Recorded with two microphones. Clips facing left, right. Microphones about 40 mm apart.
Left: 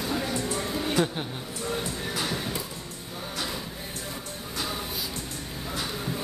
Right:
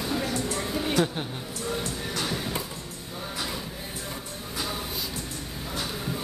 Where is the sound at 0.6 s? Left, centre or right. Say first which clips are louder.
Right 1 dB; centre.